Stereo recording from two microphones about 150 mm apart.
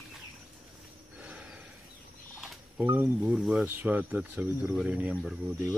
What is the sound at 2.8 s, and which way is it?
Speech, 15° right (ahead or behind).